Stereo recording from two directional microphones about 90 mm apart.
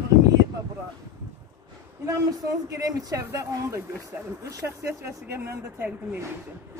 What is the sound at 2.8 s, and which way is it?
Speech, 40° right (ahead or behind).